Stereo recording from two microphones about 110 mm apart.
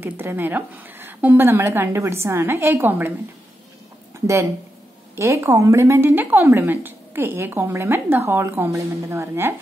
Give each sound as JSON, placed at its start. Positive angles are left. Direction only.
{"t": 0.0, "sound": "a woman's voice", "side_deg": -20}
{"t": 5.1, "sound": "a woman's voice", "side_deg": -25}